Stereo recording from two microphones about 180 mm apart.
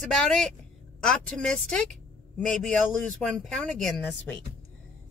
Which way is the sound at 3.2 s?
5° left (ahead or behind).